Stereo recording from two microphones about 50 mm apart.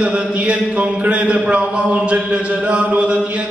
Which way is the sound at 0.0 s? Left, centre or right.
Right.